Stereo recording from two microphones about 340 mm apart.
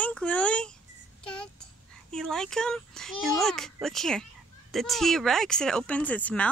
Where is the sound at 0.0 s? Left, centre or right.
Centre.